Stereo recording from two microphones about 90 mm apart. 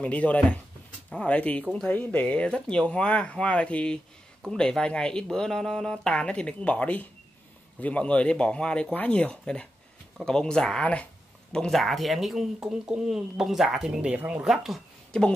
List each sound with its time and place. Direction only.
0.0 s speech: 15° left (ahead or behind)
11.5 s speech: 5° left (ahead or behind)
15.1 s speech: 10° left (ahead or behind)